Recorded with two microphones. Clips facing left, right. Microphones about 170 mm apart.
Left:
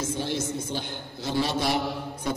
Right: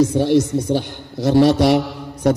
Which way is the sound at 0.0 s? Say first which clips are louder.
Right 14 dB; 70° right (ahead or behind).